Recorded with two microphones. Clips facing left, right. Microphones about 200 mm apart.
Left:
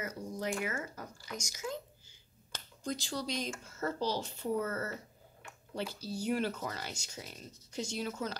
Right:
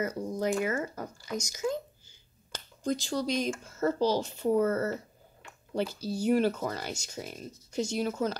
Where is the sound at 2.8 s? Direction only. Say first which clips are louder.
Right 7 dB; 45° right (ahead or behind).